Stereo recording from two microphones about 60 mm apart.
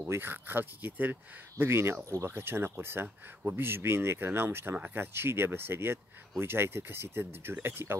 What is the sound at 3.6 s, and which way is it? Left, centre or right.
Speech, right.